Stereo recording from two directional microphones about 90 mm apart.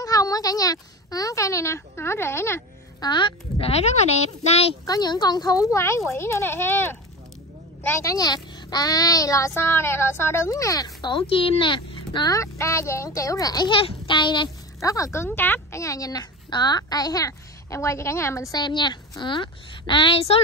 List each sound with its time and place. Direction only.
0.0 s a sound: 45° left (ahead or behind)
3.0 s a woman's voice: 60° left (ahead or behind)
4.8 s a woman's voice: 50° left (ahead or behind); by 7.0 s 25° left (ahead or behind)
8.0 s a woman's voice: 40° left (ahead or behind)
11.1 s speech: 90° left; by 12.3 s 65° left (ahead or behind)
12.3 s a woman's voice: 35° left (ahead or behind)
13.7 s a woman's voice: 70° left (ahead or behind)
14.8 s a woman's voice: 35° left (ahead or behind)
18.6 s a woman's voice: 55° left (ahead or behind); by 20.4 s 90° left